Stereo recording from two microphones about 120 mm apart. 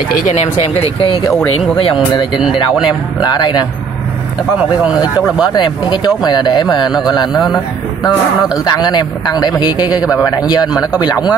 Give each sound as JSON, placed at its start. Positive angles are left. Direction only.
{"t": 0.2, "sound": "speech", "side_deg": 75}
{"t": 0.6, "sound": "a man's voice", "side_deg": 50}
{"t": 5.2, "sound": "speech", "side_deg": -10}
{"t": 5.5, "sound": "a man's voice", "side_deg": 40}
{"t": 7.3, "sound": "a man's voice", "side_deg": 0}
{"t": 8.6, "sound": "a man's voice", "side_deg": 35}
{"t": 10.7, "sound": "a man's voice", "side_deg": -5}